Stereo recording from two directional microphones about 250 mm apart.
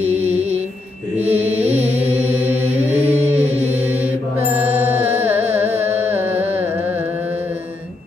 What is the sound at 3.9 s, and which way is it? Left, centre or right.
Mantra, centre.